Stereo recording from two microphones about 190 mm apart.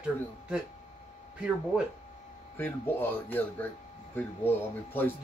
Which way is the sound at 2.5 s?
10° left (ahead or behind).